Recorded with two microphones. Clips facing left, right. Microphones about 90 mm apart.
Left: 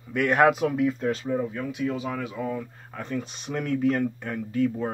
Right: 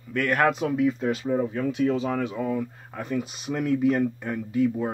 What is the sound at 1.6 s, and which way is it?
Speech, 30° right (ahead or behind).